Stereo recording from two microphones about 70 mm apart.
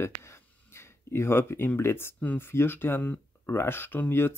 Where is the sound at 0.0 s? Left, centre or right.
Left.